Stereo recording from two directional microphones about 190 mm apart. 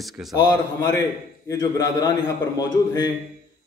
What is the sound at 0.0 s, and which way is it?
Speech, centre (ahead or behind).